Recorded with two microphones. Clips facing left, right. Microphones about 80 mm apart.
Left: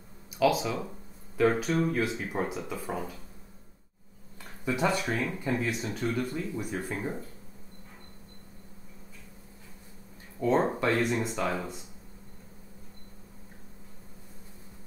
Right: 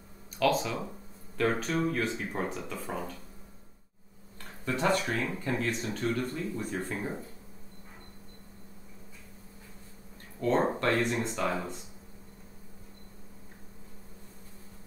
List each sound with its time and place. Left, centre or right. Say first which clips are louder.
0.4 s speech: left 2 dB; centre
4.6 s speech: even; centre
10.4 s speech: left 1 dB; centre